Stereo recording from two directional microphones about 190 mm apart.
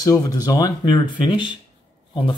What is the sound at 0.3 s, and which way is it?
Speech, 20° left (ahead or behind).